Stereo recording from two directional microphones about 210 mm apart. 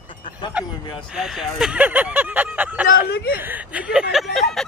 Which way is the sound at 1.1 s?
Centre (ahead or behind).